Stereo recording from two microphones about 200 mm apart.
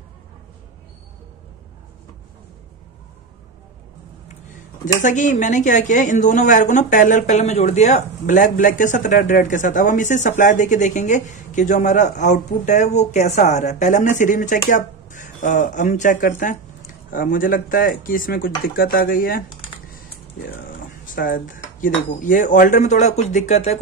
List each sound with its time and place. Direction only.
5.0 s speech: 40° left (ahead or behind)
20.5 s speech: 45° left (ahead or behind)